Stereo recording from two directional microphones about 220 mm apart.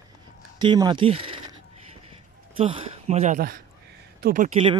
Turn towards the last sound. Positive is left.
turn(degrees=-35)  # may be behind; listen again after turning